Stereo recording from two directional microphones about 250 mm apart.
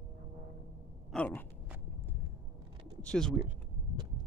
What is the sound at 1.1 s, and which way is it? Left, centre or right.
Speech, centre.